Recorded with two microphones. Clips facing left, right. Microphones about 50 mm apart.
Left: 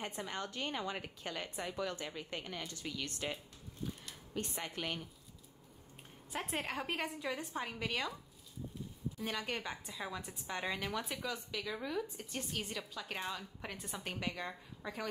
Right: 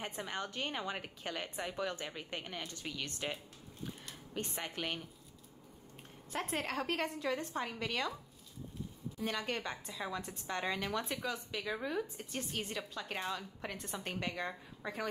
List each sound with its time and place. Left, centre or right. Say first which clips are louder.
0.0 s a woman's voice: right 1 dB; right
4.4 s a woman's voice: right 1 dB; right
6.3 s a woman's voice: right 2 dB; centre
9.2 s a woman's voice: right 2 dB; centre
11.5 s a woman's voice: right 2 dB; right
12.9 s a woman's voice: right 2 dB; centre
14.3 s a woman's voice: right 3 dB; centre
14.8 s a woman's voice: right 2 dB; right